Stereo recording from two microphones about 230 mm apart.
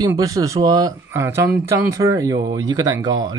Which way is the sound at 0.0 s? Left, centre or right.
Centre.